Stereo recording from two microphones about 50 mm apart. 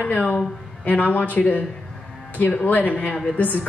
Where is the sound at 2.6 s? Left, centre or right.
Left.